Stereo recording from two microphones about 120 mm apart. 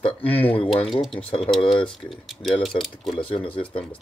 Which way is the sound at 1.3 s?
5° left (ahead or behind).